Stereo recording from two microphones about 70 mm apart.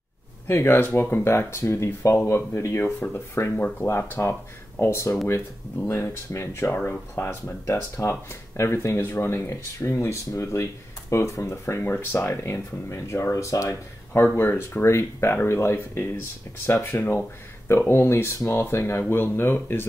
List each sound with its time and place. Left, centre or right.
0.5 s speech: left
12.3 s speech: left
14.3 s speech: left